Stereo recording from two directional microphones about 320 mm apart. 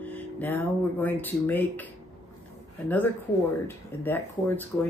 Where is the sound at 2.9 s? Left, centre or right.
Centre.